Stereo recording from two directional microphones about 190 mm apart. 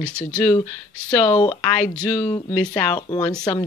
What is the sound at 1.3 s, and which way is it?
Speech, 25° left (ahead or behind).